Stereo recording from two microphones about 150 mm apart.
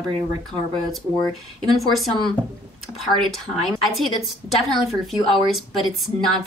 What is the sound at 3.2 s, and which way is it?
Speech, centre (ahead or behind).